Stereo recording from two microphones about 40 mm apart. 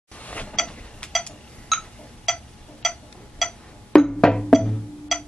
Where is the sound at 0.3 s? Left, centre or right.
Left.